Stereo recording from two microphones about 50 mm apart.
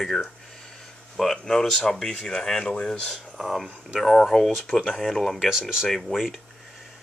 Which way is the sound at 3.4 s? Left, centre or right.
Centre.